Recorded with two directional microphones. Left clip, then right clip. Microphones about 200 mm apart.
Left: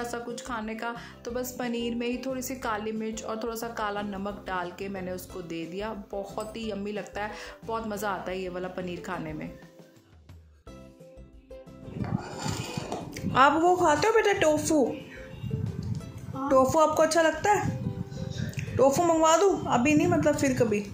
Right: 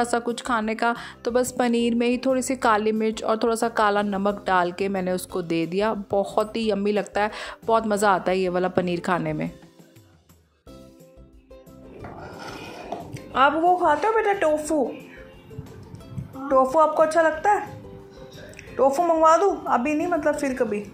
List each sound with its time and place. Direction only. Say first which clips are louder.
0.0 s speech: right 10 dB; 45° right (ahead or behind)
13.1 s a woman's voice: right 2 dB; 10° left (ahead or behind)
16.4 s a woman's voice: right 3 dB; 10° left (ahead or behind)
18.8 s a woman's voice: right 3 dB; 10° left (ahead or behind)
19.7 s a woman's voice: right 2 dB; 20° left (ahead or behind)